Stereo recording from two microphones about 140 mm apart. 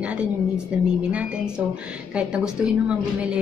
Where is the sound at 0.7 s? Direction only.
10° right (ahead or behind).